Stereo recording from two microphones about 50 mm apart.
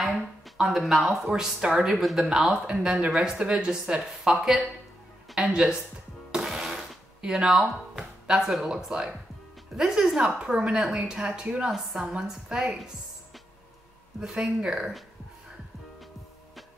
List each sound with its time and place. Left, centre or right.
0.6 s speech: centre
6.3 s sewing machine: centre
9.8 s speech: centre
14.2 s speech: centre